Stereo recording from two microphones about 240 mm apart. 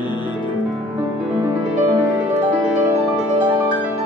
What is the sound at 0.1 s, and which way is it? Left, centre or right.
Music, centre.